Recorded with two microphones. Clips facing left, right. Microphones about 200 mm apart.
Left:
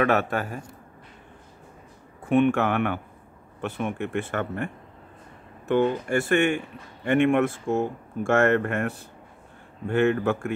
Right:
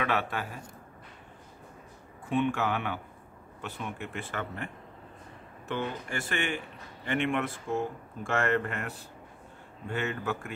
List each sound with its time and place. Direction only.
0.0 s speech: 50° left (ahead or behind)
2.2 s speech: 60° left (ahead or behind)
5.7 s speech: 50° left (ahead or behind)